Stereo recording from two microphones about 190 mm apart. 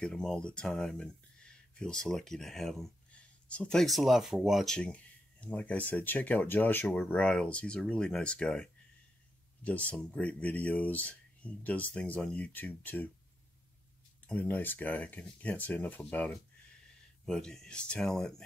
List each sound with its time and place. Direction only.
0.0 s speech: 5° left (ahead or behind)
14.2 s speech: 10° left (ahead or behind)